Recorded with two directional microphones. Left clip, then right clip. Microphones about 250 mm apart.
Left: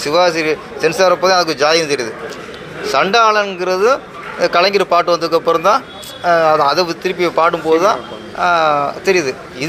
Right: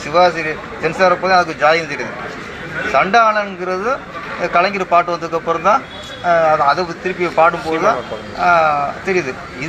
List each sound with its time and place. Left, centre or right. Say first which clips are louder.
0.0 s a man's voice: even; left